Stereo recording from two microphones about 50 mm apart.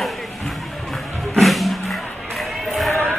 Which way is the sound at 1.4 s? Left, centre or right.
Centre.